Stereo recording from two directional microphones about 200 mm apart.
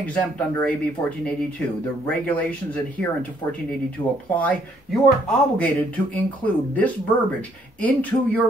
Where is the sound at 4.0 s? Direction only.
25° left (ahead or behind).